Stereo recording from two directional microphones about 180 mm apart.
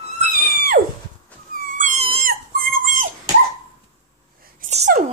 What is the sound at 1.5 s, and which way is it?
Dog, 45° right (ahead or behind).